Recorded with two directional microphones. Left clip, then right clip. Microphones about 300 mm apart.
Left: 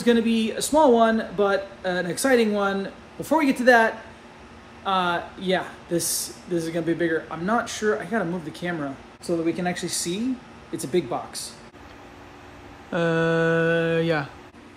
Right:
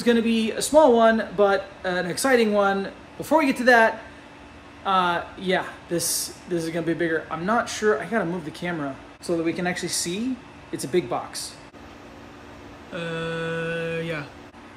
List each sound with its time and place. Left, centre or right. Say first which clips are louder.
0.0 s speech: even; centre
12.9 s mantra: left 8 dB; centre